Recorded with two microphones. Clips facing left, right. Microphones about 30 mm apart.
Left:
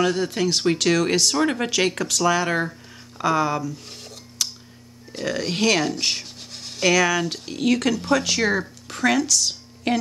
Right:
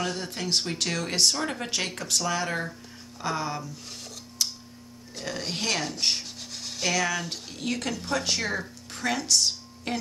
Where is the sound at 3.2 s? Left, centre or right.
Left.